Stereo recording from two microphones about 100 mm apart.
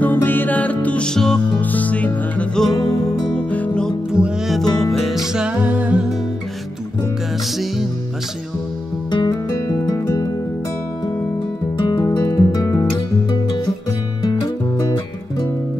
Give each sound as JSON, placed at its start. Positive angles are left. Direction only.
{"t": 0.0, "sound": "music", "side_deg": 20}
{"t": 2.8, "sound": "music", "side_deg": 40}
{"t": 3.3, "sound": "music", "side_deg": 15}
{"t": 4.1, "sound": "music", "side_deg": -5}
{"t": 7.4, "sound": "music", "side_deg": 0}
{"t": 9.1, "sound": "music", "side_deg": 40}
{"t": 11.9, "sound": "music", "side_deg": 50}
{"t": 12.4, "sound": "music", "side_deg": 35}